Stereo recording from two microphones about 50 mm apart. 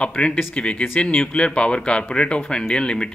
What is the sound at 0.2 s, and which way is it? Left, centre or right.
Speech, left.